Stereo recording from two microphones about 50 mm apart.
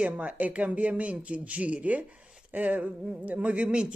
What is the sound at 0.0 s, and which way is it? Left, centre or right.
Speech, right.